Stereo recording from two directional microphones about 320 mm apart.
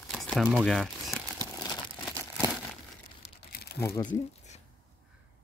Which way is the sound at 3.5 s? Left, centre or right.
Left.